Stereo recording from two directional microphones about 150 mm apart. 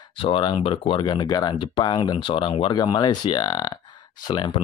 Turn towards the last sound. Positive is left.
turn(degrees=30)  # may be behind; listen again after turning